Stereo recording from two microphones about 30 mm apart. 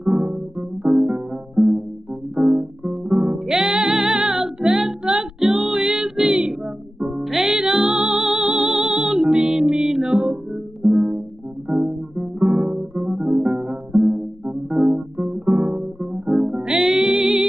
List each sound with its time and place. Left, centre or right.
0.0 s music: centre
3.5 s music: centre
11.7 s guitar: centre
14.7 s keyboard: centre
15.1 s guitar: centre
16.3 s music: centre